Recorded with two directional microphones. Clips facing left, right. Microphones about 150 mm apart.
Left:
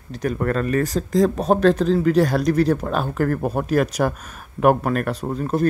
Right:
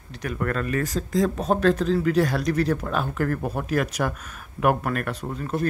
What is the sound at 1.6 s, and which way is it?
Speech, 35° left (ahead or behind).